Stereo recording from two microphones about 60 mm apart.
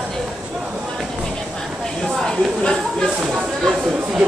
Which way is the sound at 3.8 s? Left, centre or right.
Centre.